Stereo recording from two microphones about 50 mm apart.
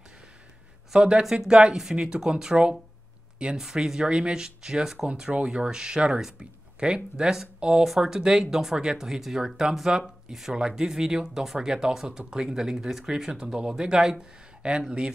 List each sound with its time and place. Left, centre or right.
0.9 s speech: centre
7.8 s speech: centre